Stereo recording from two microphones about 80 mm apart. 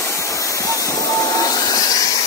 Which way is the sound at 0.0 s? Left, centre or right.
Left.